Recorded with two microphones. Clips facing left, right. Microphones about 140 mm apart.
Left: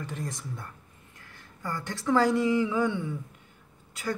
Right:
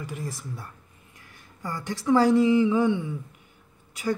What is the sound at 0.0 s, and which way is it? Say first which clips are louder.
Speech: right 1 dB; 10° right (ahead or behind).